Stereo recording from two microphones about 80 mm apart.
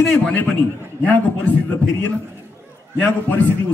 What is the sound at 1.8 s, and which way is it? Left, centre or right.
A man's voice, centre.